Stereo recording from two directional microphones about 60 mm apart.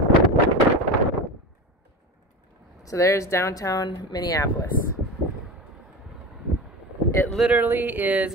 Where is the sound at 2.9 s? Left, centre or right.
Left.